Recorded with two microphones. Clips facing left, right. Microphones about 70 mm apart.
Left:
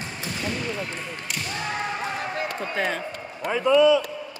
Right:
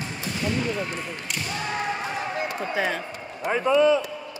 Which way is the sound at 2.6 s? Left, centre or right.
Centre.